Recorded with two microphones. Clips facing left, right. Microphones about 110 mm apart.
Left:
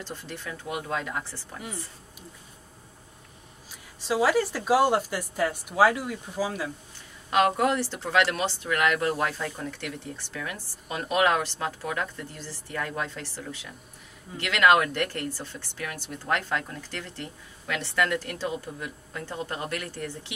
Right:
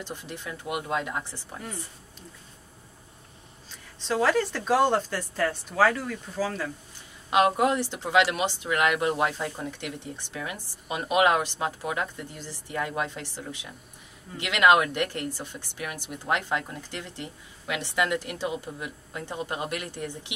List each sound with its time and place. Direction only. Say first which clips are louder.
0.0 s speech: even; 15° right (ahead or behind)
4.0 s speech: left 1 dB; 10° left (ahead or behind)
7.2 s speech: right 1 dB; 15° right (ahead or behind)